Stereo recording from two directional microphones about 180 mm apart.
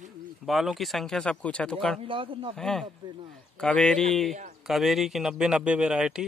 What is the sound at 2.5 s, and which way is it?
Speech, centre (ahead or behind).